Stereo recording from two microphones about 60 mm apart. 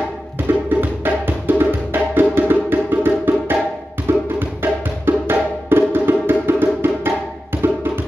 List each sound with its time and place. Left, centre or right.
0.7 s music: right